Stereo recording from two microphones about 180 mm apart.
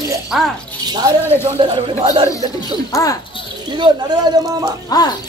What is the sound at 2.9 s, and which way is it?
Speech, 20° left (ahead or behind).